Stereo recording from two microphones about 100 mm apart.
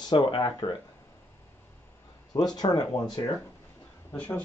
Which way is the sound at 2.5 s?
40° left (ahead or behind).